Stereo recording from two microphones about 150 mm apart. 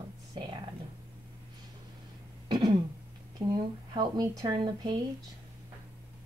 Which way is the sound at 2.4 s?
30° right (ahead or behind).